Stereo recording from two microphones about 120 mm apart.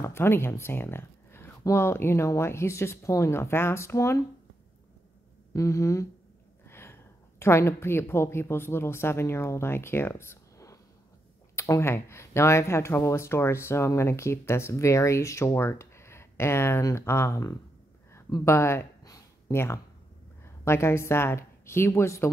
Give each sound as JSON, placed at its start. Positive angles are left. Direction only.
{"t": 0.0, "sound": "speech", "side_deg": 20}
{"t": 5.5, "sound": "a woman's voice", "side_deg": 25}
{"t": 18.1, "sound": "a sound", "side_deg": 20}
{"t": 20.6, "sound": "speech", "side_deg": 20}